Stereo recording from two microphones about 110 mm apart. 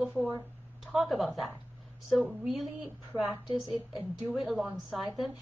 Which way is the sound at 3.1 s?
10° left (ahead or behind).